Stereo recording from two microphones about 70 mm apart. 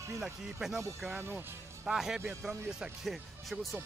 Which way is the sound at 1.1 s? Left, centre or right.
Right.